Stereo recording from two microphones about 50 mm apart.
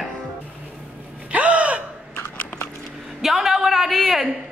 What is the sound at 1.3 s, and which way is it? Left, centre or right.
Gasp, right.